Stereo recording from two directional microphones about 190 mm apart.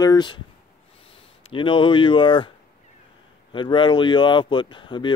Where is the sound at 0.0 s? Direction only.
20° left (ahead or behind).